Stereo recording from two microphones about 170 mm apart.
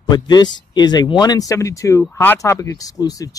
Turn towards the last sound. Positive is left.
turn(degrees=20)  # may be behind; listen again after turning